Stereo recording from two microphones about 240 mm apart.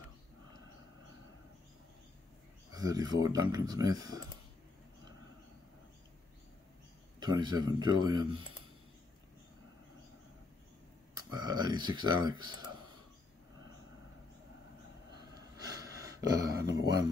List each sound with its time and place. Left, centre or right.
2.7 s speech: centre
7.2 s speech: centre
11.3 s speech: centre
15.3 s a sound: centre